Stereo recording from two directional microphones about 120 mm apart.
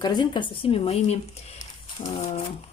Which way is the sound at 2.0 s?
45° left (ahead or behind).